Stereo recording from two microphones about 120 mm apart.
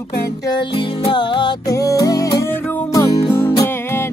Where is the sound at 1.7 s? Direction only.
30° left (ahead or behind).